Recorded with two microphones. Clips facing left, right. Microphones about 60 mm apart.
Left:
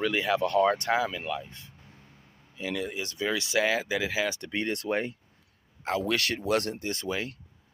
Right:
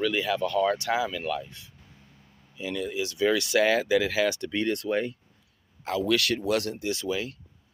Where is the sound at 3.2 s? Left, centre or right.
Centre.